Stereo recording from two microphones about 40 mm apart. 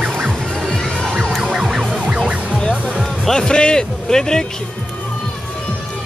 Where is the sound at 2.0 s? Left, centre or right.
Right.